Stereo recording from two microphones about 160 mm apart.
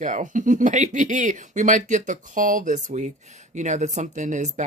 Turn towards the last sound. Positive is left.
turn(degrees=-50)  # may be behind; listen again after turning